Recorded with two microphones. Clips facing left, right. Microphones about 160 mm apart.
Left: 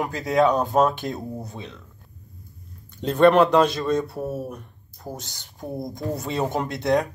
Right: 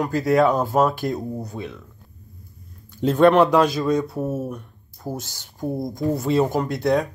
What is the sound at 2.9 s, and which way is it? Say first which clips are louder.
Speech: right 1 dB; 5° right (ahead or behind).